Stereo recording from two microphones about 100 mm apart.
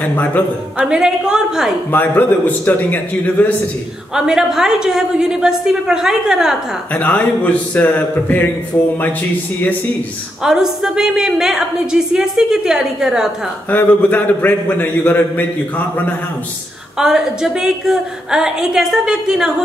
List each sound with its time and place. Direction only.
0.0 s a man's voice: 20° left (ahead or behind)
0.7 s a woman's voice: 10° right (ahead or behind)
1.9 s a man's voice: 20° left (ahead or behind)
4.1 s a woman's voice: 5° right (ahead or behind)
6.9 s a man's voice: 15° left (ahead or behind)
10.4 s a woman's voice: 5° right (ahead or behind)
13.7 s a man's voice: 15° left (ahead or behind)
17.0 s a woman's voice: 5° right (ahead or behind)